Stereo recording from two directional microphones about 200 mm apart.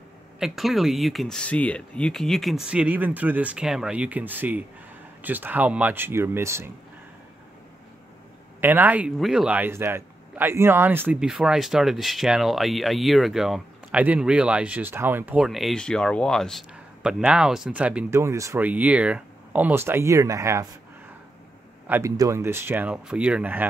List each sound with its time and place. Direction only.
0.4 s speech: centre (ahead or behind)
8.5 s speech: 10° right (ahead or behind)
21.8 s speech: 10° right (ahead or behind)